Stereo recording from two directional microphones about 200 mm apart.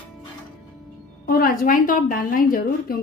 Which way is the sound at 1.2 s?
45° left (ahead or behind).